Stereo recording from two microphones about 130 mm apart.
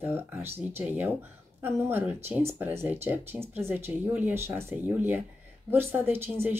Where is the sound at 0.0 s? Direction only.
15° right (ahead or behind).